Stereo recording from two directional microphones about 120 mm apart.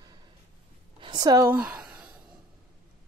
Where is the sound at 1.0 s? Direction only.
35° right (ahead or behind).